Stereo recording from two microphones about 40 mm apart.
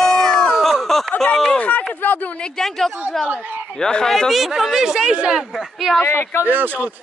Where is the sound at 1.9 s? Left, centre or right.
Left.